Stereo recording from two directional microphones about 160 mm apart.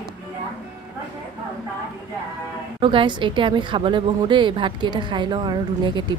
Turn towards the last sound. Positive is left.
turn(degrees=-30)  # may be behind; listen again after turning